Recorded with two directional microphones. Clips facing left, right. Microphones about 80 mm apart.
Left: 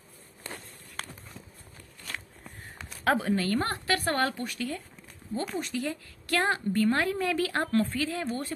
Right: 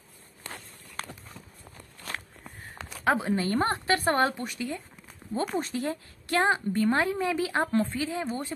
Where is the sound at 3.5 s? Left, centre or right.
Right.